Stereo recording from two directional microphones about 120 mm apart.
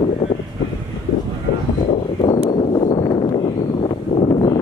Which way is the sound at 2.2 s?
45° left (ahead or behind).